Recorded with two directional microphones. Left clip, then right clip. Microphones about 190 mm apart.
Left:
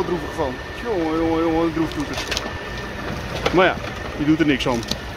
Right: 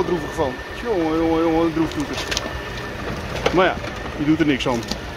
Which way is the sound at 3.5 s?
15° right (ahead or behind).